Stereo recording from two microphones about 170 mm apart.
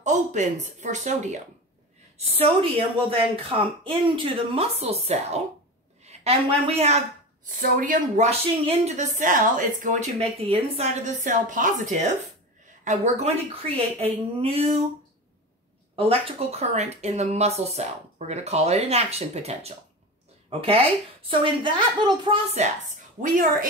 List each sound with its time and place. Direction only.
0.0 s a woman's voice: 45° right (ahead or behind)
2.3 s a woman's voice: 35° right (ahead or behind)
7.4 s a woman's voice: 55° right (ahead or behind); by 14.8 s 35° right (ahead or behind)
16.0 s speech: 35° right (ahead or behind)
23.2 s a woman's voice: 55° right (ahead or behind)